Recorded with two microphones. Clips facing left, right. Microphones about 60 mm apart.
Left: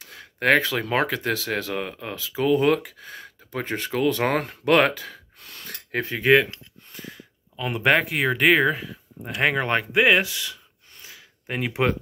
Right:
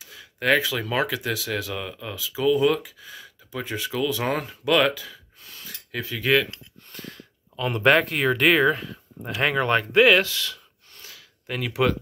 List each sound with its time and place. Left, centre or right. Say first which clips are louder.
0.0 s speech: left 2 dB; left
6.1 s speech: left 4 dB; left
6.9 s speech: even; centre; by 12.0 s left